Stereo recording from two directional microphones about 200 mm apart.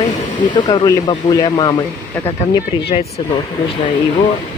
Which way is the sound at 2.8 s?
30° left (ahead or behind).